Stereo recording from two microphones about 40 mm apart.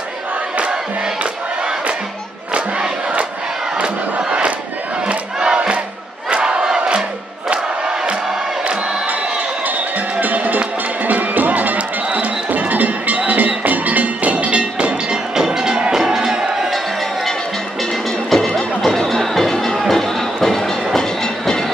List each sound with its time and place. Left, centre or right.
1.2 s crowd: right
4.3 s battle cry: right
5.0 s crowd: right
9.7 s music: right
12.4 s music: right
15.3 s music: centre
18.3 s music: centre
19.9 s train: centre